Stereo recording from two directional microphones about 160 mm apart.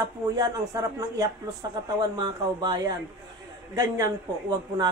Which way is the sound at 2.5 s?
25° right (ahead or behind).